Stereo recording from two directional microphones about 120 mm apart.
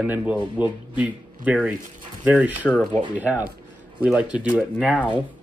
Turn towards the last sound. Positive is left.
turn(degrees=-10)  # may be behind; listen again after turning